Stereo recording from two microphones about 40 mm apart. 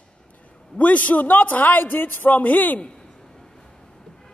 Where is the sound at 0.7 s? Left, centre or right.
Left.